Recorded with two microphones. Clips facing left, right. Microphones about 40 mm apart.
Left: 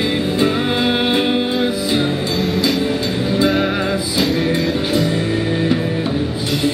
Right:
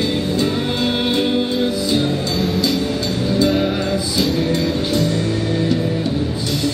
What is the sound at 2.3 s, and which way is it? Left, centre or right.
Music, centre.